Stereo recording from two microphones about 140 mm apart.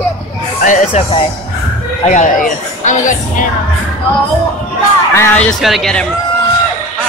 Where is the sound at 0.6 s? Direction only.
65° left (ahead or behind).